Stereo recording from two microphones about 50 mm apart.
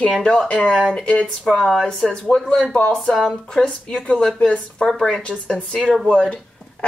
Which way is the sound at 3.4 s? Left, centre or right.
Left.